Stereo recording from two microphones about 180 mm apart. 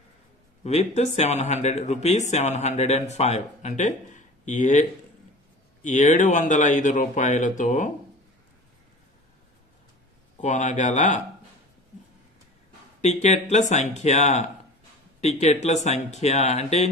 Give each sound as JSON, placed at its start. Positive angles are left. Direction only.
{"t": 0.7, "sound": "speech", "side_deg": 35}
{"t": 10.3, "sound": "speech", "side_deg": 45}
{"t": 13.0, "sound": "speech", "side_deg": 40}